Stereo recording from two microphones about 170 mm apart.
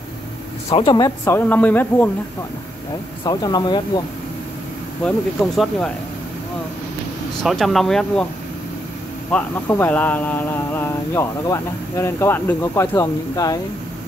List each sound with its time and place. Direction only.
0.7 s speech: 30° left (ahead or behind)
1.2 s speech: 10° left (ahead or behind)
3.3 s speech: 25° left (ahead or behind)
5.0 s speech: 5° left (ahead or behind)
7.4 s speech: centre (ahead or behind)
9.3 s speech: 10° left (ahead or behind)